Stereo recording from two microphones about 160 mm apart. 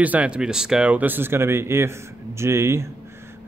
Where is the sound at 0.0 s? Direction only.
10° right (ahead or behind).